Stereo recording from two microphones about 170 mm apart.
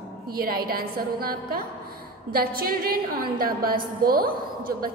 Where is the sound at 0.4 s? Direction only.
60° right (ahead or behind).